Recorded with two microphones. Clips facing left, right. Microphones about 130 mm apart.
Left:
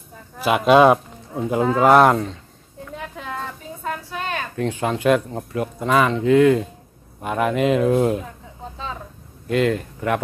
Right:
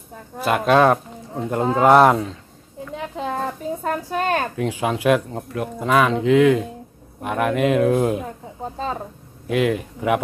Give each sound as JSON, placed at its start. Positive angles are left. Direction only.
{"t": 0.4, "sound": "speech", "side_deg": 5}
{"t": 3.2, "sound": "a sound", "side_deg": -25}
{"t": 3.8, "sound": "a woman's voice", "side_deg": -45}
{"t": 4.6, "sound": "speech", "side_deg": -5}
{"t": 8.7, "sound": "a sound", "side_deg": -45}
{"t": 9.5, "sound": "speech", "side_deg": -5}